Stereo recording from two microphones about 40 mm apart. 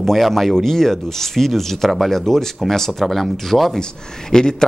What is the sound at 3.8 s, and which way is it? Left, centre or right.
Speech, centre.